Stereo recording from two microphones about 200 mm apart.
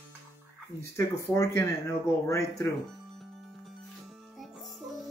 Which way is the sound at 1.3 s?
15° left (ahead or behind).